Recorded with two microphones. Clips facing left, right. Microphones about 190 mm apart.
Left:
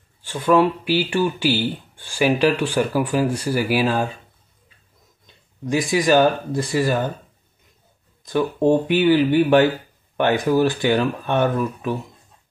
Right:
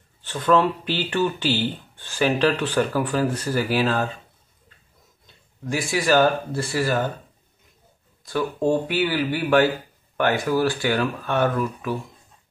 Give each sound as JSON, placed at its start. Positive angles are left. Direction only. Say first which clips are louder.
{"t": 0.2, "sound": "speech", "louder": "left 3 dB", "side_deg": 10}
{"t": 5.2, "sound": "speech", "louder": "left 4 dB", "side_deg": 20}
{"t": 8.2, "sound": "speech", "louder": "left 4 dB", "side_deg": 20}